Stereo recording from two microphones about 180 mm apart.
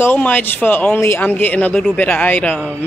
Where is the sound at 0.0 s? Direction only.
10° left (ahead or behind).